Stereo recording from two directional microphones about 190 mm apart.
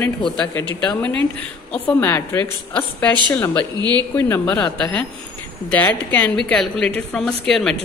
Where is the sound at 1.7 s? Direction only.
10° left (ahead or behind).